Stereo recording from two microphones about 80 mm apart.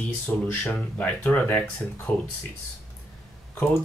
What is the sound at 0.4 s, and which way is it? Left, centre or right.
Speech, centre.